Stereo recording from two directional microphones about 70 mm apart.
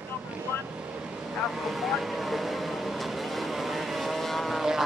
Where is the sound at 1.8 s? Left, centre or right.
Centre.